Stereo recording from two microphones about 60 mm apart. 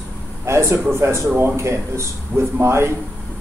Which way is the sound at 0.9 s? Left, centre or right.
Right.